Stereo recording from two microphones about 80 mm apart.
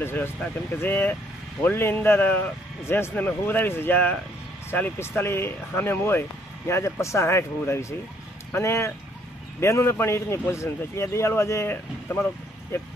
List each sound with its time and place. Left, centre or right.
0.0 s a man's voice: left